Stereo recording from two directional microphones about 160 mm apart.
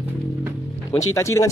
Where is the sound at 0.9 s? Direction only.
20° left (ahead or behind).